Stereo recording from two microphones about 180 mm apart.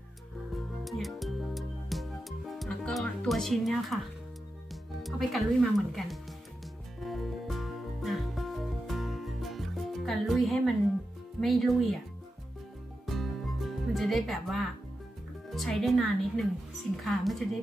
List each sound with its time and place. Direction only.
0.8 s music: centre (ahead or behind)
5.0 s speech: centre (ahead or behind)
7.0 s music: centre (ahead or behind)
11.4 s speech: centre (ahead or behind)
13.0 s music: centre (ahead or behind)
15.5 s speech: centre (ahead or behind)